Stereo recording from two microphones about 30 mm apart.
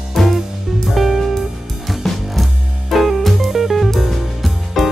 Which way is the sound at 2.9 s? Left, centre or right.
Centre.